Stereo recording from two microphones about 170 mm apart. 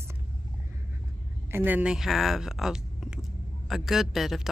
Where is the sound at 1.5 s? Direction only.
10° right (ahead or behind).